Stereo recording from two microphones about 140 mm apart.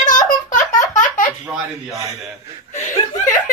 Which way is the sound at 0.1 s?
65° left (ahead or behind).